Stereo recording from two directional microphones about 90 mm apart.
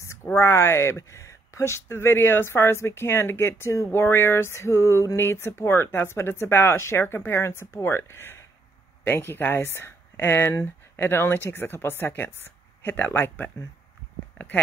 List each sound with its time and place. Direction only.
0.0 s speech: 30° left (ahead or behind)